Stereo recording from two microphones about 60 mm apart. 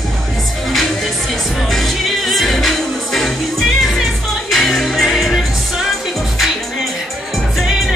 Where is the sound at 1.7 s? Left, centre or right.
Centre.